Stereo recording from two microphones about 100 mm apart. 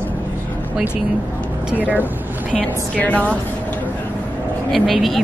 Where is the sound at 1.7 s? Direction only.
15° right (ahead or behind).